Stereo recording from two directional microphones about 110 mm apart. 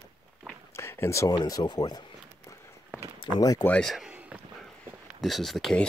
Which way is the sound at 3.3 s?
35° left (ahead or behind).